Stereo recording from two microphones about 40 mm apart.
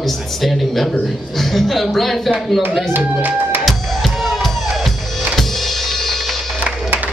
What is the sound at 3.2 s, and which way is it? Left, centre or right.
Music, right.